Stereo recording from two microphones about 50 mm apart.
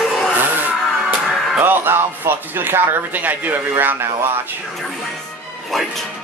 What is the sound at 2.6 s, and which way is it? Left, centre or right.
Speech, right.